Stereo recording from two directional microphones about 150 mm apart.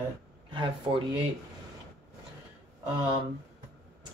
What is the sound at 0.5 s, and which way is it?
Speech, 35° right (ahead or behind).